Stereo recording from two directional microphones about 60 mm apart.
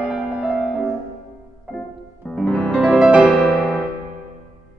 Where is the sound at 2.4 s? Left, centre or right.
Centre.